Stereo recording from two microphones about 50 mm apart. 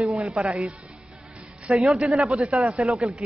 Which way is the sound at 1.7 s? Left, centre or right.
Centre.